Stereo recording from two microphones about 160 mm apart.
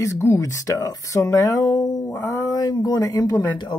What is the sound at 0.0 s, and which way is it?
Speech, 15° left (ahead or behind).